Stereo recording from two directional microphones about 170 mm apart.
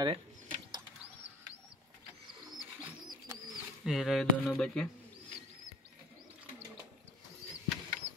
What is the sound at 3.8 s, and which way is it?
Speech, centre (ahead or behind).